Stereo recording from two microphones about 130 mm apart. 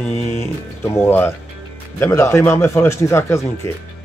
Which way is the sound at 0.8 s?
15° left (ahead or behind).